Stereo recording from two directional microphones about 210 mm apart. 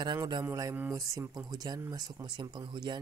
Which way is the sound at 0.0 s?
20° right (ahead or behind).